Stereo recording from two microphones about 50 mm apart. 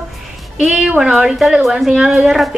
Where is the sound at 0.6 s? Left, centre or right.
Centre.